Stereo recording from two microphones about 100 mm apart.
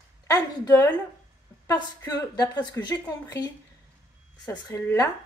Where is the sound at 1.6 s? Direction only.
35° left (ahead or behind).